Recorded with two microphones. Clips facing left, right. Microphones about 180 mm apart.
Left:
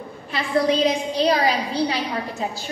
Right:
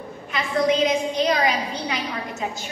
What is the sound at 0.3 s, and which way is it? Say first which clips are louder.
A woman's voice: left 1 dB; 35° left (ahead or behind).